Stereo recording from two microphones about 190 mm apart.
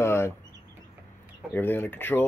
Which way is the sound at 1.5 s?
10° left (ahead or behind).